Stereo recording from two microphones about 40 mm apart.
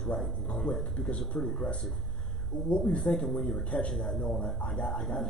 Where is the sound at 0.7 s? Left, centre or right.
Left.